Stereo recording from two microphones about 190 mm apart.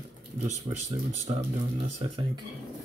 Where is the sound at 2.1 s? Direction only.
25° right (ahead or behind).